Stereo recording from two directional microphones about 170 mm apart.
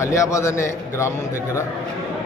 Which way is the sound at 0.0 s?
15° left (ahead or behind).